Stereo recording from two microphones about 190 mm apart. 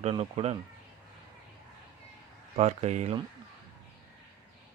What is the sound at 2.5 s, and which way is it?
Speech, 35° right (ahead or behind).